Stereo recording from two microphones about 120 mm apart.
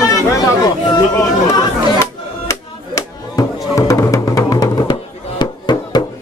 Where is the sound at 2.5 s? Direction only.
25° left (ahead or behind).